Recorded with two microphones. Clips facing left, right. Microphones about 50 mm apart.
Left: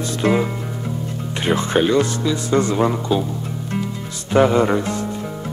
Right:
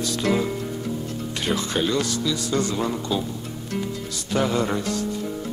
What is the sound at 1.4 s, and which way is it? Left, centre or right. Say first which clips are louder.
Speech: left 7 dB; left.